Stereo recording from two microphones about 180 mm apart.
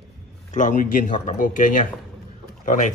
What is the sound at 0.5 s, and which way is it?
Speech, 45° left (ahead or behind).